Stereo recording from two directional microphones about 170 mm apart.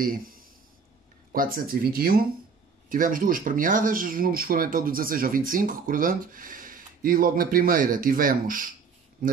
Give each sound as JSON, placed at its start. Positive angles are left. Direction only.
{"t": 1.3, "sound": "speech", "side_deg": -55}